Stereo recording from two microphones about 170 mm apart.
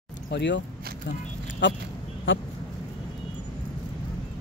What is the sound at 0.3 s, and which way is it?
Speech, 90° left.